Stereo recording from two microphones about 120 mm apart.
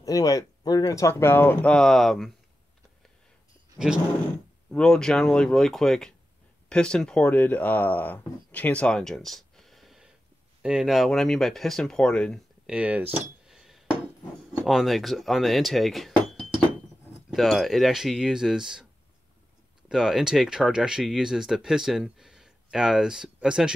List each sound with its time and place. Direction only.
0.0 s speech: 30° left (ahead or behind); by 2.3 s centre (ahead or behind)
3.7 s roaring cats: 5° right (ahead or behind)
4.6 s speech: 5° left (ahead or behind)
12.6 s speech: 10° right (ahead or behind)
13.5 s chink: 5° right (ahead or behind)
14.6 s speech: centre (ahead or behind)
19.9 s speech: 5° right (ahead or behind)